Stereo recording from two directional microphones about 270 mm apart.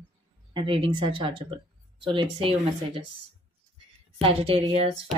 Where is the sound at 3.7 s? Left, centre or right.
Right.